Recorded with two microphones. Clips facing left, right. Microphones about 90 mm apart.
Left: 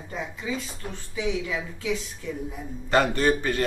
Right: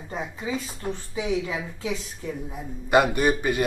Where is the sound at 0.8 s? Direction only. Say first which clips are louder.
Right 1 dB; 30° right (ahead or behind).